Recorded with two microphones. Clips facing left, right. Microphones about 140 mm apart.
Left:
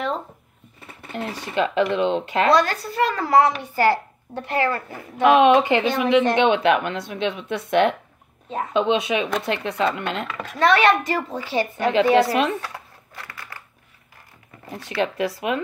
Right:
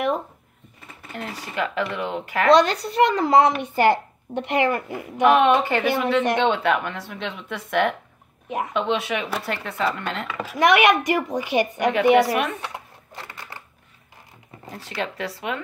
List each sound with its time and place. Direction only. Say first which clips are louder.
1.0 s a sound: left 4 dB; 20° left (ahead or behind)
1.4 s a woman's voice: left 5 dB; 25° left (ahead or behind)
2.5 s a child's voice: right 7 dB; 20° right (ahead or behind)
5.2 s a woman's voice: left 2 dB; 15° left (ahead or behind)
8.5 s speech: right 1 dB; 15° right (ahead or behind)
8.7 s a woman's voice: left 5 dB; 20° left (ahead or behind)
10.2 s speech: right 1 dB; 5° right (ahead or behind)
12.3 s a woman's voice: left 2 dB; 25° left (ahead or behind)
12.5 s crumpling: left 2 dB; 20° right (ahead or behind)
15.0 s a woman's voice: left 6 dB; 20° left (ahead or behind)